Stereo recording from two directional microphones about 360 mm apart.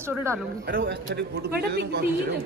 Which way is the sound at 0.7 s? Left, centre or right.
Right.